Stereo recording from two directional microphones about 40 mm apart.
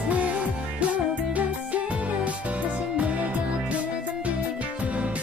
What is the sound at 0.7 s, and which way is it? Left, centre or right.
Music, right.